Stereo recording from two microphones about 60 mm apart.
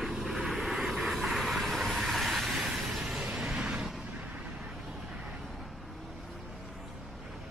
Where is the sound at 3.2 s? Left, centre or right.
Centre.